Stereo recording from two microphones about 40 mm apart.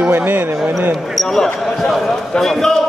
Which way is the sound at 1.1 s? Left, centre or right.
Centre.